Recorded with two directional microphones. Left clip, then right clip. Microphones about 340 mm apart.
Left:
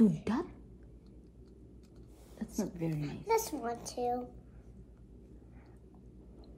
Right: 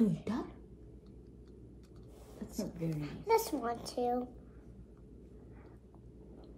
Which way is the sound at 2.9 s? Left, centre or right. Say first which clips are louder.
Right 2 dB; centre.